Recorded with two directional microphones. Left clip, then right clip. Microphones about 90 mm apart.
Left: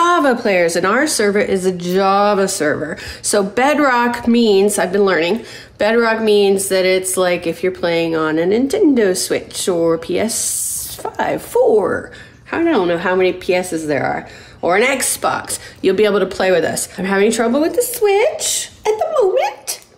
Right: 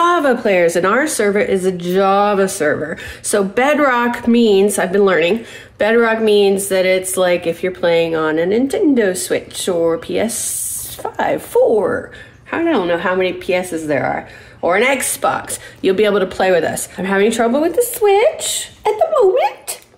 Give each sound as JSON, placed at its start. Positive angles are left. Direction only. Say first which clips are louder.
{"t": 0.0, "sound": "speech", "louder": "even", "side_deg": 30}
{"t": 7.3, "sound": "speech", "louder": "right 1 dB", "side_deg": 30}
{"t": 8.5, "sound": "speech", "louder": "left 1 dB", "side_deg": 45}